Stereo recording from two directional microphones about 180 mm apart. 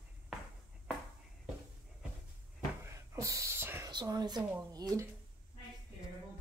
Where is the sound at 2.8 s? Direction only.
15° right (ahead or behind).